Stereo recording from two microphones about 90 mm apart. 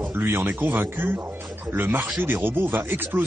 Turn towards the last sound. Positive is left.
turn(degrees=-25)  # may be behind; listen again after turning